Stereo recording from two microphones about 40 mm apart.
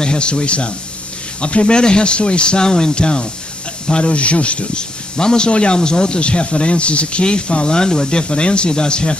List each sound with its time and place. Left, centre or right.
0.0 s speech: left